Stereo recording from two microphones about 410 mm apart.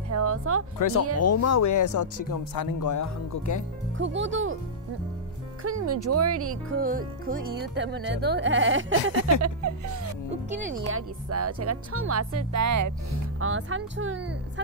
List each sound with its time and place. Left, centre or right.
0.1 s speech: right
0.7 s speech: left
4.0 s speech: right
5.6 s speech: right
6.8 s speech: right
9.4 s speech: right
10.9 s speech: right
13.4 s speech: right